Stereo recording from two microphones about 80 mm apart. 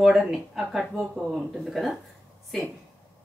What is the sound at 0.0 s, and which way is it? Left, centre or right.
Speech, centre.